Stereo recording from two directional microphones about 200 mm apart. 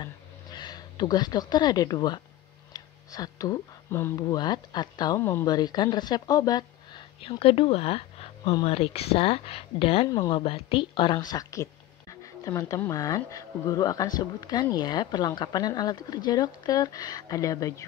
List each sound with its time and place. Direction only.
0.0 s speech: 20° left (ahead or behind)